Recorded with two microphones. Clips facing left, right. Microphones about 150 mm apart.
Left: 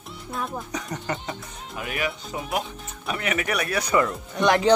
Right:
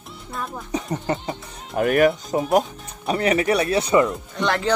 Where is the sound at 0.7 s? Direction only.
30° right (ahead or behind).